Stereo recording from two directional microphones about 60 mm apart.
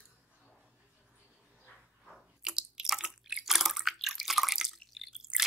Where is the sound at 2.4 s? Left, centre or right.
Centre.